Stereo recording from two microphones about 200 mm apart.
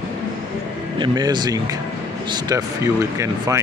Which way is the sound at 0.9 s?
20° right (ahead or behind).